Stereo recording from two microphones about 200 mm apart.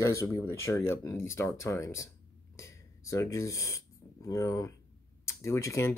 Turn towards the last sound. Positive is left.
turn(degrees=15)  # may be behind; listen again after turning